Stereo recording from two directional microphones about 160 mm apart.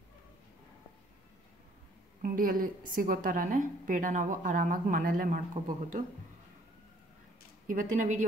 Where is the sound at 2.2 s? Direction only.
60° right (ahead or behind).